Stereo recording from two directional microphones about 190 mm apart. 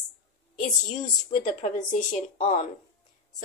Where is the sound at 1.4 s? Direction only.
40° left (ahead or behind).